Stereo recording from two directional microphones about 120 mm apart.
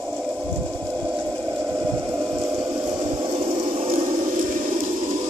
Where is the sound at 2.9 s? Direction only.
40° right (ahead or behind); by 5.2 s 85° right.